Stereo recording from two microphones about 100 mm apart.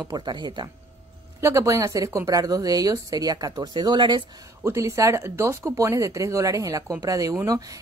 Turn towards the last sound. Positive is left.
turn(degrees=-35)  # may be behind; listen again after turning